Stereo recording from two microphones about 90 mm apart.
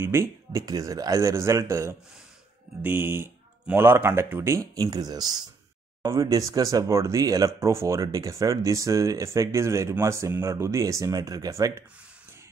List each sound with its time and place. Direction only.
0.0 s speech: 30° right (ahead or behind)
4.7 s speech: 45° right (ahead or behind)